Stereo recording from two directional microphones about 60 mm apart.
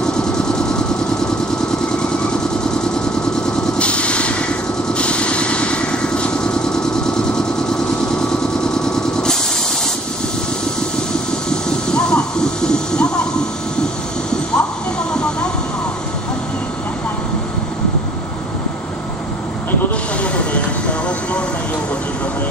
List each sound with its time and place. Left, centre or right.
0.0 s vehicle: centre
3.7 s vehicle: centre
8.8 s vehicle: centre
11.9 s a sound: centre